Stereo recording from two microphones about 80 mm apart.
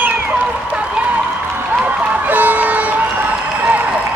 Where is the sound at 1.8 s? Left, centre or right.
Right.